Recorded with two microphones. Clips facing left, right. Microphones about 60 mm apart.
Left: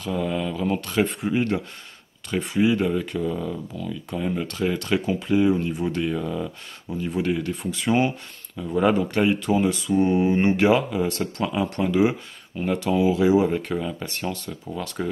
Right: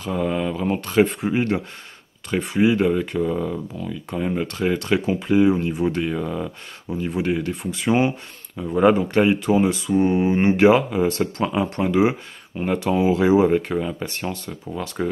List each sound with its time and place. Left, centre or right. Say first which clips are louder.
0.0 s speech: right 3 dB; right
15.0 s speech: right 4 dB; centre